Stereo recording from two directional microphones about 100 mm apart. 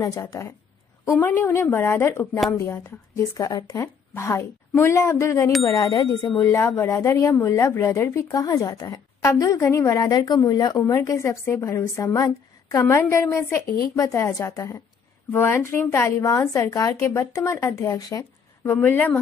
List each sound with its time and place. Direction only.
0.0 s speech: 30° left (ahead or behind)
1.2 s a woman's voice: 20° left (ahead or behind)
3.3 s speech: 40° left (ahead or behind)
4.1 s a woman's voice: 25° left (ahead or behind)
5.8 s speech: 60° left (ahead or behind)
6.3 s a woman's voice: 25° left (ahead or behind)
11.0 s a woman's voice: 30° left (ahead or behind)
18.7 s a woman's voice: 20° left (ahead or behind)